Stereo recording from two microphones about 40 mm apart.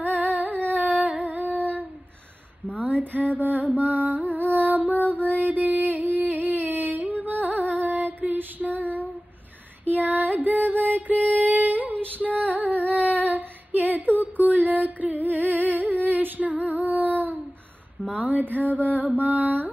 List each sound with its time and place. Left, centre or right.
0.7 s humming: right
2.8 s a sound: right
3.3 s music: right
12.7 s humming: left
13.3 s female singing: right
14.6 s music: right
16.1 s female singing: right
18.0 s a sound: right
18.9 s mantra: right